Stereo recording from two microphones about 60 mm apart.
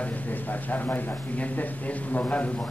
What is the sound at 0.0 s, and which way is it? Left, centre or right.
A man's voice, left.